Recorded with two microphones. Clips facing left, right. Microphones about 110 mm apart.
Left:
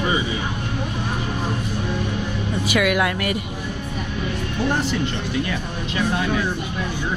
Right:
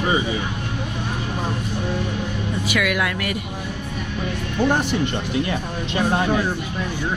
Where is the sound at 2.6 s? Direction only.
30° left (ahead or behind).